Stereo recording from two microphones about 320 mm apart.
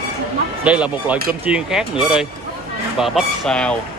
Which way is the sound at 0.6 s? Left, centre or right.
Centre.